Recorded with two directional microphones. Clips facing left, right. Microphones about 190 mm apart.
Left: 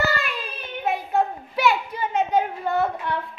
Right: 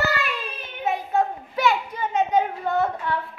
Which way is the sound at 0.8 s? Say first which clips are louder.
Even; 5° left (ahead or behind).